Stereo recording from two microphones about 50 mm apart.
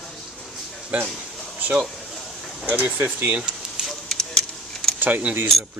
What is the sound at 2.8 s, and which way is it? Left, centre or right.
Speech, right.